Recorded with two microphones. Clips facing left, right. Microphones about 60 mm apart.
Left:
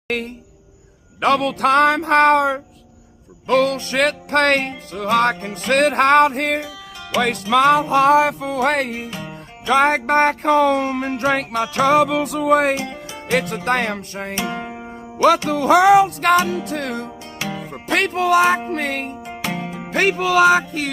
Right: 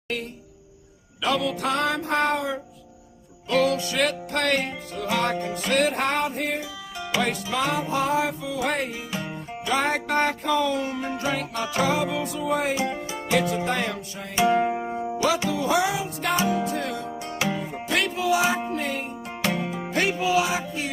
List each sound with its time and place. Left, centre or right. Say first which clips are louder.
0.1 s music: left 5 dB; left
3.4 s music: left 5 dB; left
9.1 s music: even; centre
9.7 s music: left 9 dB; left
12.8 s music: right 2 dB; centre
13.3 s music: left 4 dB; left
14.4 s music: right 6 dB; centre
15.5 s music: left 11 dB; left
17.4 s music: even; centre
17.8 s music: left 6 dB; left
19.4 s music: even; centre
19.9 s music: left 6 dB; left